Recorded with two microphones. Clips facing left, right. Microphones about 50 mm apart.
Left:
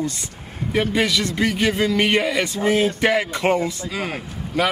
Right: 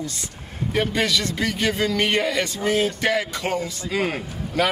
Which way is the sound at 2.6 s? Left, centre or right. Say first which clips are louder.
Left 4 dB; left.